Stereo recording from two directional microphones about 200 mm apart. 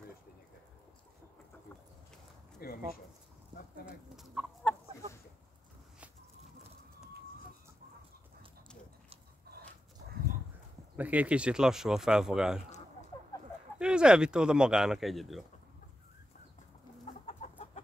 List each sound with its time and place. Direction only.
2.6 s a sound: 50° left (ahead or behind)
3.8 s speech: centre (ahead or behind)
11.0 s speech: 5° right (ahead or behind)
13.7 s speech: 5° right (ahead or behind)
17.0 s chicken: 35° left (ahead or behind)